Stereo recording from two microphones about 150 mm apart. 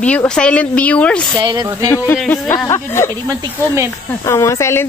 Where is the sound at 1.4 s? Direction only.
30° right (ahead or behind).